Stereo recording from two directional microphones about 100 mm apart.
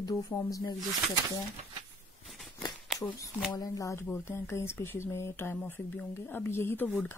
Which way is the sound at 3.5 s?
35° left (ahead or behind).